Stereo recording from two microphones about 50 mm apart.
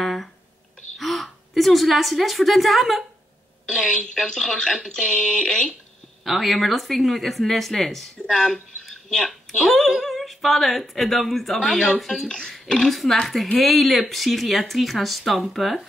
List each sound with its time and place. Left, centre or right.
0.0 s a sound: centre
0.9 s a woman's voice: centre
4.0 s speech: centre
6.2 s speech: centre
12.3 s speech: centre